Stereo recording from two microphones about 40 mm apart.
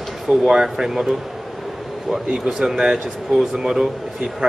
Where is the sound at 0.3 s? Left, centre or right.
Centre.